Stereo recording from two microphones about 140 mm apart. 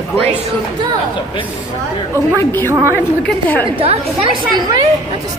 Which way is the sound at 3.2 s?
10° left (ahead or behind).